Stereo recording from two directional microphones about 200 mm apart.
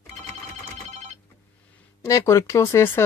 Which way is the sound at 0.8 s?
35° right (ahead or behind).